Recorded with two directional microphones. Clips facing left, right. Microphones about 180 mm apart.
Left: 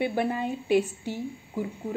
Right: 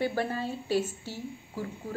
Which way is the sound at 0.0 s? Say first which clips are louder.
Left 3 dB; 15° left (ahead or behind).